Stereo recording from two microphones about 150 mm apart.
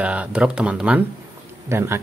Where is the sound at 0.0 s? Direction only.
10° right (ahead or behind).